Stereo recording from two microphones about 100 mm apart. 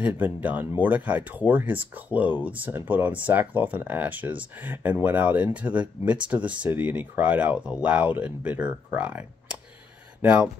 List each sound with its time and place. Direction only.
0.0 s speech: 15° right (ahead or behind)